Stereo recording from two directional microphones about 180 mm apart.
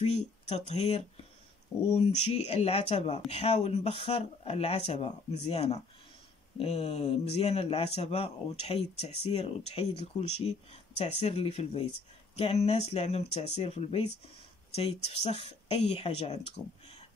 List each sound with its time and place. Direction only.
0.0 s speech: 35° left (ahead or behind)